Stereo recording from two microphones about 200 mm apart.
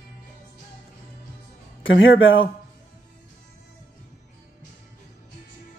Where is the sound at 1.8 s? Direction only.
75° left (ahead or behind).